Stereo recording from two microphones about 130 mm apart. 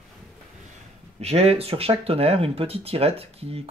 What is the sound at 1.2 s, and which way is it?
A man's voice, 55° right (ahead or behind).